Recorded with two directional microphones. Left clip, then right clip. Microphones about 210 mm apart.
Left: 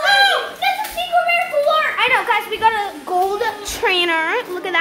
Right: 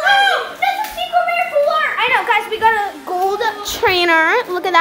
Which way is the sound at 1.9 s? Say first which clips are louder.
Right 1 dB; 25° right (ahead or behind).